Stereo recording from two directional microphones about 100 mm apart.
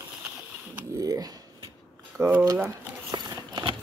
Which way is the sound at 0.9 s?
35° right (ahead or behind).